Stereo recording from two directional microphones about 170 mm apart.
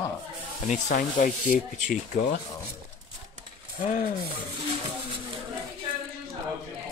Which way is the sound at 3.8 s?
50° left (ahead or behind).